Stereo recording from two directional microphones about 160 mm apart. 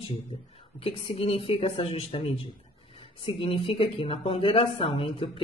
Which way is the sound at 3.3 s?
35° left (ahead or behind).